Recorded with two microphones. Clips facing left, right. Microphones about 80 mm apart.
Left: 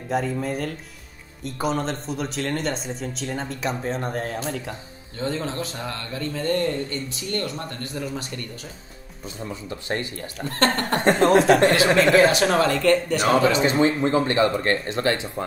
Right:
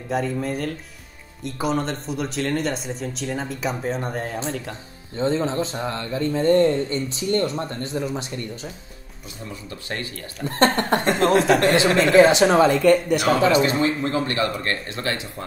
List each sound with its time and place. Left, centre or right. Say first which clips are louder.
0.1 s speech: even; centre
5.1 s speech: right 5 dB; right
9.5 s speech: left 4 dB; left
10.4 s speech: right 3 dB; right
11.0 s speech: left 2 dB; left
11.2 s speech: left 1 dB; centre
12.2 s speech: right 4 dB; right
13.5 s speech: right 1 dB; left